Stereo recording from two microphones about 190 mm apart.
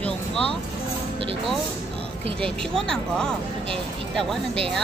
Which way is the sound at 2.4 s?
5° left (ahead or behind).